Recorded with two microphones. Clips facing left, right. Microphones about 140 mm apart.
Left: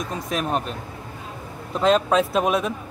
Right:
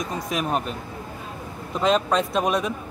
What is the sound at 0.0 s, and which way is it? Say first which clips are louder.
Speech: even; centre (ahead or behind).